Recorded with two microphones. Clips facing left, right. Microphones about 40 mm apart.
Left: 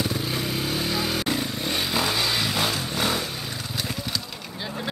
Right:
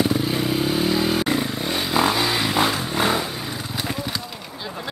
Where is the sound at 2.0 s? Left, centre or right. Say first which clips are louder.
Right 6 dB; centre.